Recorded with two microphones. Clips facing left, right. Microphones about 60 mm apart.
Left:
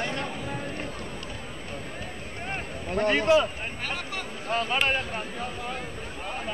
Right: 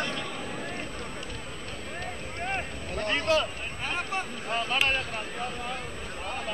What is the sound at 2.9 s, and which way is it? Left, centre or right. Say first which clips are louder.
Speech: left 5 dB; left.